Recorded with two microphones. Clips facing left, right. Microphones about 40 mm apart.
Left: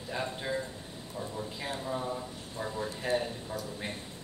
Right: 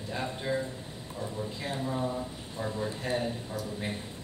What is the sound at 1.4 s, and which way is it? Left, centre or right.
Speech, centre.